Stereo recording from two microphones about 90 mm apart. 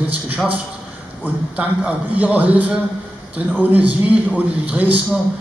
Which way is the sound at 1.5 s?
15° right (ahead or behind).